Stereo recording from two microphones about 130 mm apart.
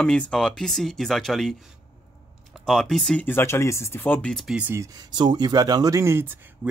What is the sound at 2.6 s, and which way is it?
Speech, 5° left (ahead or behind).